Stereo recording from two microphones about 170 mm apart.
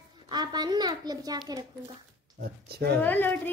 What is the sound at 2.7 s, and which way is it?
Speech, 70° right (ahead or behind).